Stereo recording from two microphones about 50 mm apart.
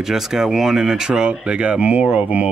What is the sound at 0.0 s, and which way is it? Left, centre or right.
Speech, centre.